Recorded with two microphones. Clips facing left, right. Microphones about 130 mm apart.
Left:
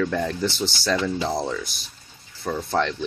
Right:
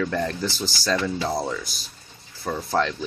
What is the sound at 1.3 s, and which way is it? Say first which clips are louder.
Speech: left 1 dB; 5° right (ahead or behind).